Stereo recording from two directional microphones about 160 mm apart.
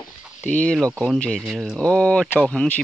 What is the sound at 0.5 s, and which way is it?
Speech, 5° left (ahead or behind).